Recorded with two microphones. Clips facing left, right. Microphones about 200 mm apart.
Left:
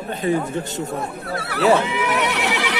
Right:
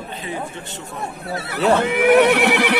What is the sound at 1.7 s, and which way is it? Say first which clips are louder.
Speech: right 7 dB; 55° right (ahead or behind).